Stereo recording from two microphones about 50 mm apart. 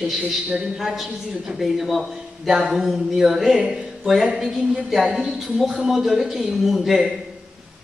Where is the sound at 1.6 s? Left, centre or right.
Centre.